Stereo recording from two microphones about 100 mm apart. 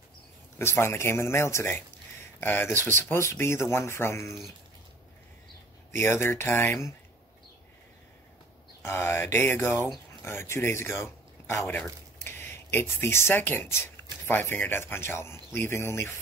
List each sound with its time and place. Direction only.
0.6 s speech: 25° left (ahead or behind)
5.9 s speech: 25° left (ahead or behind)
8.8 s speech: 25° left (ahead or behind)